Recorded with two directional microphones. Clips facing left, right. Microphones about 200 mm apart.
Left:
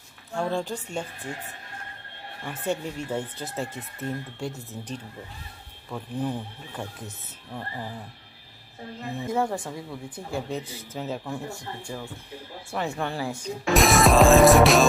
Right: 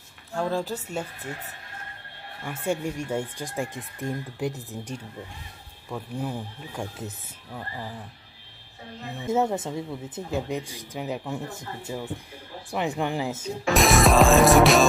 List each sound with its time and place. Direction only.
0.3 s music: centre (ahead or behind)
2.4 s speech: 10° right (ahead or behind)
5.9 s speech: 5° right (ahead or behind)
9.3 s speech: 20° right (ahead or behind)
13.4 s music: centre (ahead or behind)